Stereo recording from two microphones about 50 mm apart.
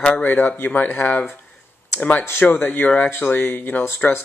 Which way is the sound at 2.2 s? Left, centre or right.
Left.